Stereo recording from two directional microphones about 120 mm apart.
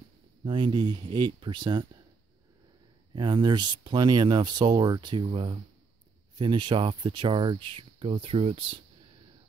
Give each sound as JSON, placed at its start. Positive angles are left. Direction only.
{"t": 0.5, "sound": "speech", "side_deg": -40}
{"t": 3.2, "sound": "speech", "side_deg": -35}